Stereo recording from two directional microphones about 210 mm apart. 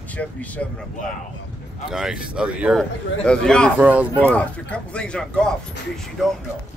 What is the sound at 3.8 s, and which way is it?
Speech, 5° right (ahead or behind).